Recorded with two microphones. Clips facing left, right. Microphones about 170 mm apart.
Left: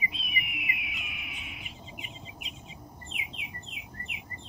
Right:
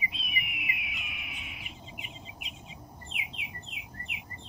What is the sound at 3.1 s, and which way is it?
Bird, 40° left (ahead or behind).